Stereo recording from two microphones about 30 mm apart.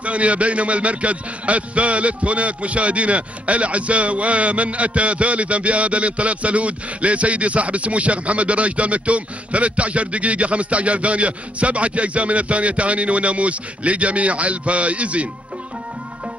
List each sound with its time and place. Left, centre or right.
0.0 s a man's voice: right